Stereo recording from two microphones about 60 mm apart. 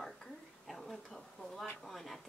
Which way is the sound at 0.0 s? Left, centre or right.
Centre.